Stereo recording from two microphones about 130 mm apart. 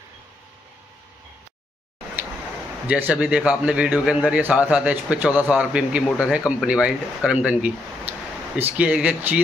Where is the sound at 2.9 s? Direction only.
10° right (ahead or behind).